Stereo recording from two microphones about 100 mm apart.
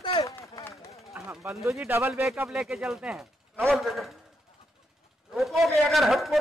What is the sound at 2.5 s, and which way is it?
A man's voice, 5° right (ahead or behind).